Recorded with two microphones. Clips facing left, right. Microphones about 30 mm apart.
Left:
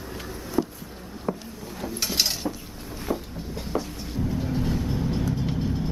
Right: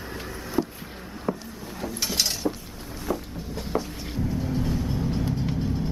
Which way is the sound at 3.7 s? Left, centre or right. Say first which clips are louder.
Right 1 dB; centre.